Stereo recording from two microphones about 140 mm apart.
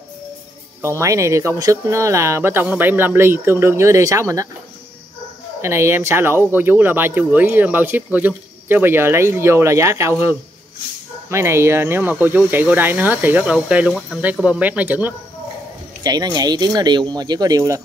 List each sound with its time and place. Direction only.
0.8 s speech: 20° right (ahead or behind)
5.6 s speech: 20° right (ahead or behind)
16.0 s speech: 30° right (ahead or behind)